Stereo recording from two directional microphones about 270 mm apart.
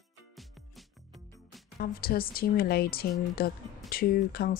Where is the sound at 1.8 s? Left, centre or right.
Left.